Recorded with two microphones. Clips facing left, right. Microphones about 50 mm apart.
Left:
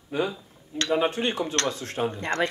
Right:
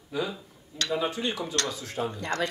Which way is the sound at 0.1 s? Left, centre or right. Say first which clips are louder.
Left 4 dB; left.